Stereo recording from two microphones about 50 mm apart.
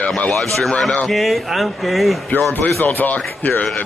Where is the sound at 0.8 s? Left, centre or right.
Centre.